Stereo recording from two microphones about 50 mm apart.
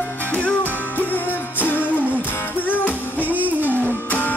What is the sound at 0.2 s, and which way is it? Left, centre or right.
Music, left.